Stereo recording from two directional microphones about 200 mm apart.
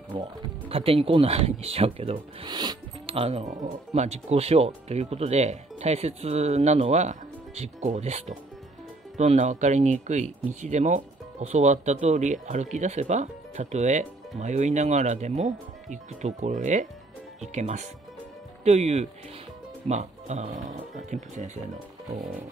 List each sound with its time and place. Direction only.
0.1 s speech: 25° right (ahead or behind)